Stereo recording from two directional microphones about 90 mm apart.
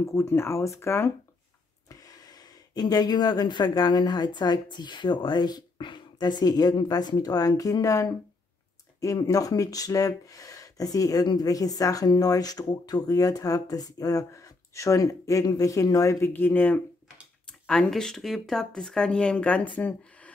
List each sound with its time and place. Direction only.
0.0 s speech: 30° left (ahead or behind)
1.9 s speech: 45° left (ahead or behind)
16.2 s speech: 20° left (ahead or behind)
17.5 s speech: 10° left (ahead or behind)